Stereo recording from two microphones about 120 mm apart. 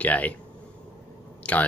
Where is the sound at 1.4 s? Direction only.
10° left (ahead or behind).